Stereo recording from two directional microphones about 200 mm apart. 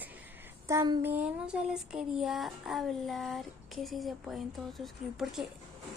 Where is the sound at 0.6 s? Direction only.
20° right (ahead or behind).